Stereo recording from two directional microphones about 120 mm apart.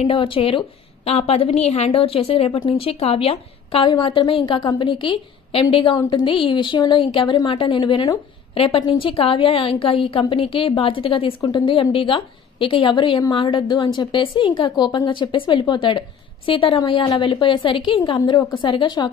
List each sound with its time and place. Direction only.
0.0 s a woman's voice: 50° left (ahead or behind)
3.8 s a woman's voice: 40° left (ahead or behind)